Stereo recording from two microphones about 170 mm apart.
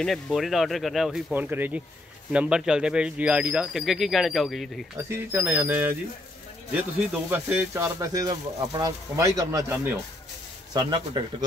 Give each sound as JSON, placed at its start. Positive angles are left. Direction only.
{"t": 0.0, "sound": "speech", "side_deg": 0}
{"t": 5.1, "sound": "speech", "side_deg": -10}